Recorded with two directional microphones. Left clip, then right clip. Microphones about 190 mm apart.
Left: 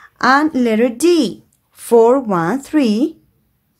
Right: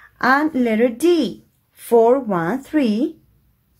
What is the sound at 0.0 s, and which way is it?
Speech, 15° left (ahead or behind).